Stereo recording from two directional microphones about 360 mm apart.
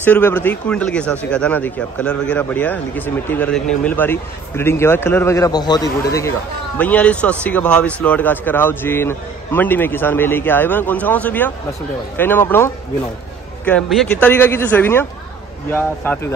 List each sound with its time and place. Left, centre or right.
0.0 s speech: centre